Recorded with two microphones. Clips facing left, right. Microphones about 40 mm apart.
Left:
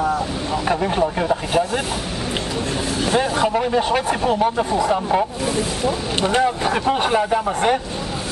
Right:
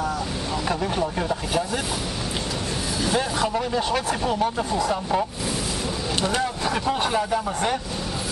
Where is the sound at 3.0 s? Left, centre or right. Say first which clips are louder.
Left 5 dB; left.